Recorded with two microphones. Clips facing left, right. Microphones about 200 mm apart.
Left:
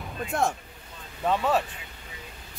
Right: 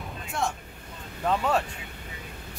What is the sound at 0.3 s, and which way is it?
Speech, 50° left (ahead or behind).